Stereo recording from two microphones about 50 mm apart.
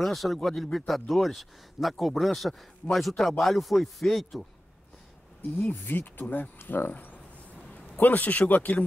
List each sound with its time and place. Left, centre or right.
0.0 s speech: centre
5.6 s speech: left
6.9 s speech: left